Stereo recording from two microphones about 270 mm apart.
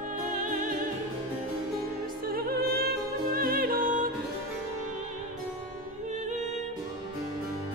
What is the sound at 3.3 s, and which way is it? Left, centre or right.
Music, right.